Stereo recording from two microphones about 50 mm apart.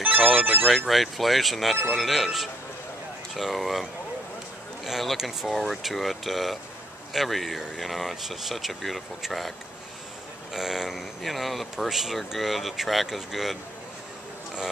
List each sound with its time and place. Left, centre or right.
0.0 s a sound: right
0.7 s speech: centre
4.8 s speech: centre
10.5 s speech: centre